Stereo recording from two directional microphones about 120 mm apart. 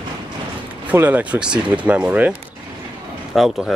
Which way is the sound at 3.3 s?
5° right (ahead or behind).